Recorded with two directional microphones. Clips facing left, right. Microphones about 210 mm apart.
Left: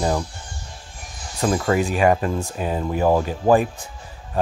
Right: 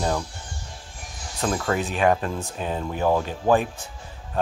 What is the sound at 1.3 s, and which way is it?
Speech, 10° left (ahead or behind).